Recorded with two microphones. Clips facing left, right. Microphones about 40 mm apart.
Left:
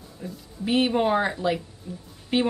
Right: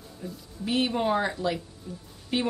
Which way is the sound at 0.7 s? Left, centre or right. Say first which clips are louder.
Left 4 dB; centre.